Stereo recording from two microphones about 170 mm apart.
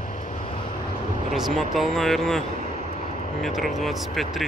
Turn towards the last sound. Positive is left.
turn(degrees=0)  # may be behind; listen again after turning